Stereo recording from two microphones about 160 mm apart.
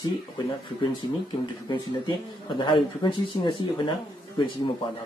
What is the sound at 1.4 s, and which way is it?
Speech, 30° left (ahead or behind).